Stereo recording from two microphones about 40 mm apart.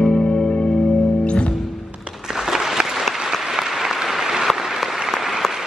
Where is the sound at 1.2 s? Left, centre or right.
Left.